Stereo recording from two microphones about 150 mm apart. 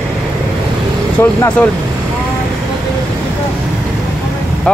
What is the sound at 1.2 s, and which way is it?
Speech, 15° left (ahead or behind).